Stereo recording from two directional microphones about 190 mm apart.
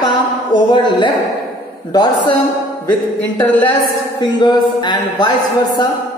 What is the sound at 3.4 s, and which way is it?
Speech, 10° left (ahead or behind).